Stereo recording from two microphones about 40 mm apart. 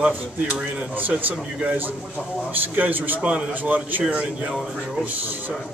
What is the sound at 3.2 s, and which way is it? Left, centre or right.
Speech, centre.